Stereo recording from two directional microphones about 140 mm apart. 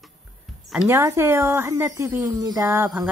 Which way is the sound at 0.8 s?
20° right (ahead or behind).